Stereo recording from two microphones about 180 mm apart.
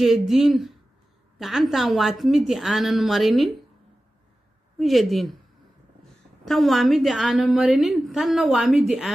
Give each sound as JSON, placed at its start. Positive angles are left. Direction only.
{"t": 0.0, "sound": "a woman's voice", "side_deg": 0}
{"t": 4.7, "sound": "a woman's voice", "side_deg": 0}
{"t": 6.4, "sound": "a woman's voice", "side_deg": 0}